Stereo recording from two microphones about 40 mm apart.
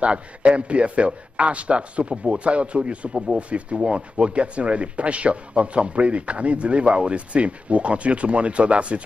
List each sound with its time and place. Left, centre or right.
0.0 s a man's voice: right